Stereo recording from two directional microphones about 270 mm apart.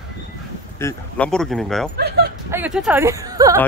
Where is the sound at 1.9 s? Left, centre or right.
Right.